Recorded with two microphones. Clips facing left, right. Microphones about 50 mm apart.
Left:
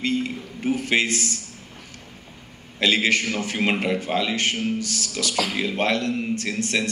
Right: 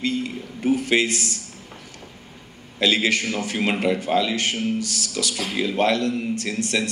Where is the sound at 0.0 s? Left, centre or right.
Left.